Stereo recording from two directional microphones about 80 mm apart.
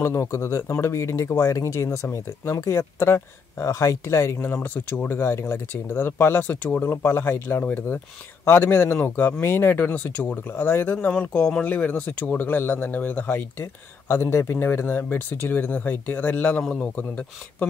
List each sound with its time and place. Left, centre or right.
0.0 s speech: left; by 16.6 s centre
16.6 s a man's voice: centre